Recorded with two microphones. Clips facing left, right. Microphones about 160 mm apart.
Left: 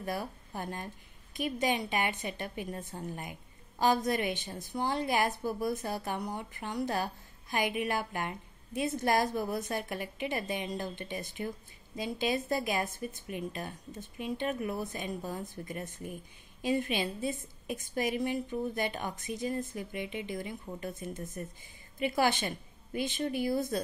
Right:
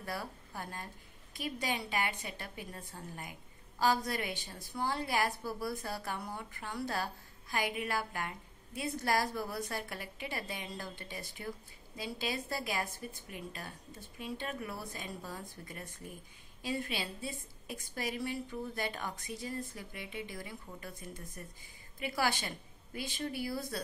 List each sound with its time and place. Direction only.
0.0 s a woman's voice: 20° left (ahead or behind)